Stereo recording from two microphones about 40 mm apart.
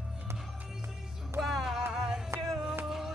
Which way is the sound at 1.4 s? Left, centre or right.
Centre.